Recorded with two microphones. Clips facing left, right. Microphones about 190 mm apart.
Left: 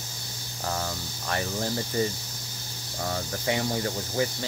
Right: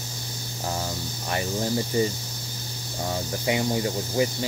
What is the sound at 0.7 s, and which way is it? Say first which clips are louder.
Speech: right 1 dB; 15° right (ahead or behind).